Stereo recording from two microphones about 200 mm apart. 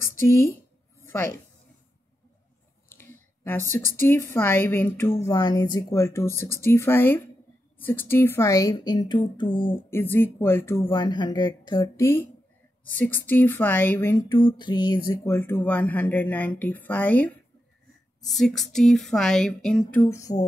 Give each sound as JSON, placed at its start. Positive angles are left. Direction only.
{"t": 0.0, "sound": "a sound", "side_deg": 15}
{"t": 2.9, "sound": "speech", "side_deg": 10}
{"t": 9.8, "sound": "speech", "side_deg": 10}
{"t": 10.9, "sound": "speech", "side_deg": 20}
{"t": 14.3, "sound": "speech", "side_deg": 20}
{"t": 18.2, "sound": "a sound", "side_deg": 0}